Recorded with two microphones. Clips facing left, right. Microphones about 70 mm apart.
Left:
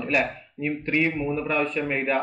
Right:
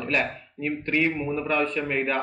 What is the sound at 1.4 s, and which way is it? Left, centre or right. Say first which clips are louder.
Speech: right 2 dB; centre.